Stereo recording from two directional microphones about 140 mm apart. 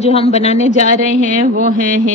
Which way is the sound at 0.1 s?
50° left (ahead or behind).